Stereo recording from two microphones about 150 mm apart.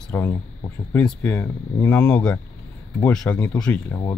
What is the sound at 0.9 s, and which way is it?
Speech, 10° left (ahead or behind).